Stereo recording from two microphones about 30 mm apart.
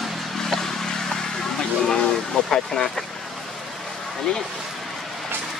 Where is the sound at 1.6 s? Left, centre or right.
Left.